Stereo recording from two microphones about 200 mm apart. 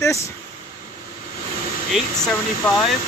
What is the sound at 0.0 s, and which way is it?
Speech, 15° left (ahead or behind).